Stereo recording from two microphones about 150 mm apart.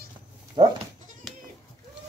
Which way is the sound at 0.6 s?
30° right (ahead or behind).